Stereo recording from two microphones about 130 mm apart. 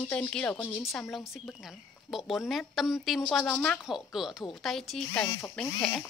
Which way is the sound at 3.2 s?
10° left (ahead or behind).